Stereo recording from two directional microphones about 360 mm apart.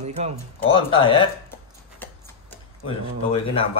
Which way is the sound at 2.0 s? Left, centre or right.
Centre.